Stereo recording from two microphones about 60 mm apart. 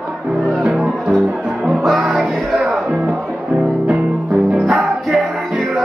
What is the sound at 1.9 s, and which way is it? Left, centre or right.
Music, centre.